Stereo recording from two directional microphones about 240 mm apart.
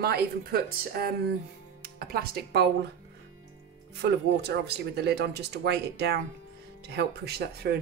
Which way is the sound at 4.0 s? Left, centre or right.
Right.